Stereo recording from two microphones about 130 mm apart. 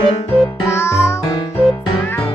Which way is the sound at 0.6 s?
20° left (ahead or behind).